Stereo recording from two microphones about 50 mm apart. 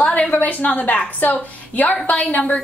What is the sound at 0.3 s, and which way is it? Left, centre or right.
A woman's voice, left.